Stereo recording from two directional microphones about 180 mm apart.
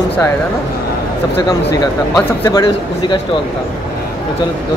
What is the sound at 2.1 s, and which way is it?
Speech, 20° left (ahead or behind).